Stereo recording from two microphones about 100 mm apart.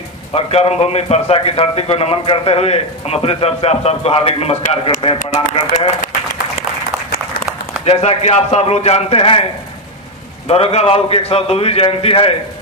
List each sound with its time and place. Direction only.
0.3 s speech: 90° left
7.8 s speech: 85° left
10.5 s a man's voice: 90° left; by 12.4 s 70° left (ahead or behind)